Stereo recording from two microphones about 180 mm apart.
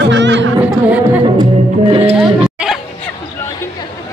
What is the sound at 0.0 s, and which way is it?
Music, 80° right.